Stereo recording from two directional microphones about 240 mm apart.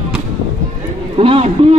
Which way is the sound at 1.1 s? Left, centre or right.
Right.